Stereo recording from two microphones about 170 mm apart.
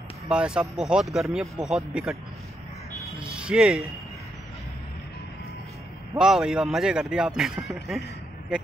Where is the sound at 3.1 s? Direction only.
15° left (ahead or behind).